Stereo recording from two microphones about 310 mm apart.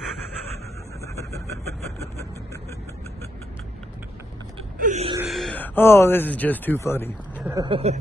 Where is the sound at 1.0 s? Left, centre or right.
Centre.